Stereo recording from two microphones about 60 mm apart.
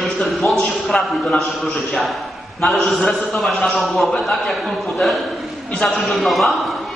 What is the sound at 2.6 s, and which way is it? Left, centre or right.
A man's voice, centre.